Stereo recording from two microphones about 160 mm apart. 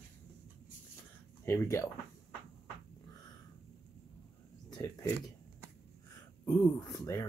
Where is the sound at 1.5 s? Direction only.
15° left (ahead or behind).